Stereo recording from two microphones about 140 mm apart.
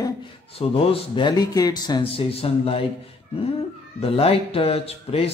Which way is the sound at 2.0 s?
45° left (ahead or behind).